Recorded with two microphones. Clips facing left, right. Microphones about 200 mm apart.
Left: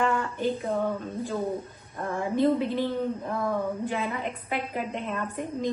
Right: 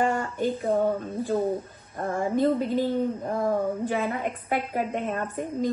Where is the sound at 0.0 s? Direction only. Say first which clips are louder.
Right 1 dB; 45° right (ahead or behind).